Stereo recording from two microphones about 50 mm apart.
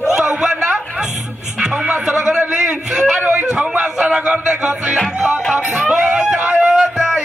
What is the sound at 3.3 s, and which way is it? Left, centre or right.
Music, centre.